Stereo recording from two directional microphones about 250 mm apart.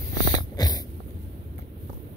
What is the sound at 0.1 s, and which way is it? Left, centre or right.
Dog, centre.